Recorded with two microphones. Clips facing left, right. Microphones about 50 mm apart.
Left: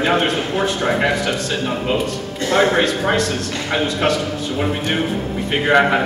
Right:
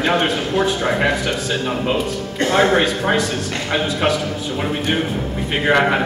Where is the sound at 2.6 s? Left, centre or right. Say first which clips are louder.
Even; centre.